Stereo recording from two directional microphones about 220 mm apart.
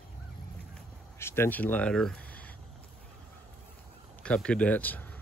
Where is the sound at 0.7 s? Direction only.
10° left (ahead or behind).